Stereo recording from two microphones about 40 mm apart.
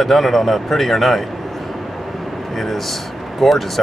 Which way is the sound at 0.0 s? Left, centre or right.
Centre.